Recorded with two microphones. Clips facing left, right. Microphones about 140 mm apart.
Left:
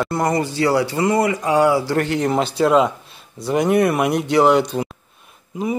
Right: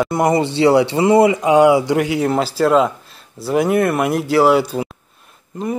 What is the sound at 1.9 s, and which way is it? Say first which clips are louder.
Speech: right 2 dB; 10° right (ahead or behind).